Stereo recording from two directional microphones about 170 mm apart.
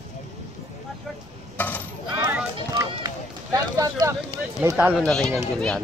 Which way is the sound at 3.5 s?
20° right (ahead or behind).